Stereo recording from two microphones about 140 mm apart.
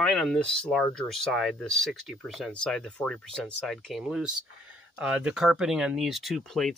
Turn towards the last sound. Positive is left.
turn(degrees=0)  # may be behind; listen again after turning